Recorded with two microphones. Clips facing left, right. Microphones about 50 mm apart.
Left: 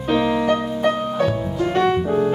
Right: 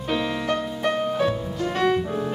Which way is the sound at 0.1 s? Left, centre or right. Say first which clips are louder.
Left 7 dB; centre.